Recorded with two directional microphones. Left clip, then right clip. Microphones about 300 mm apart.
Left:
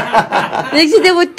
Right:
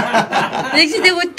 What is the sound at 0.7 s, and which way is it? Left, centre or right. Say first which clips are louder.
Speech: left 4 dB; centre.